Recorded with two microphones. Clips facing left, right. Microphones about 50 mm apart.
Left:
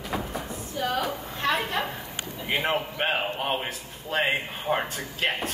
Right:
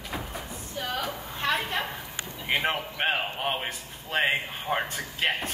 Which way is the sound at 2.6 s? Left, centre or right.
Centre.